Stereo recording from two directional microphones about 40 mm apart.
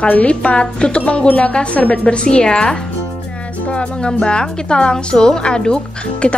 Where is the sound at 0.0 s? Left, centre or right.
Left.